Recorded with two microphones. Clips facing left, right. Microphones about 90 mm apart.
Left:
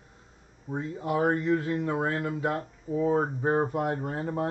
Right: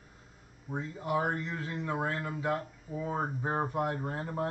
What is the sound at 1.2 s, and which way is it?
Speech, 50° left (ahead or behind).